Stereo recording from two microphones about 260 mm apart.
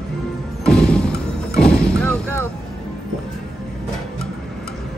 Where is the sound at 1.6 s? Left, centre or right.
Centre.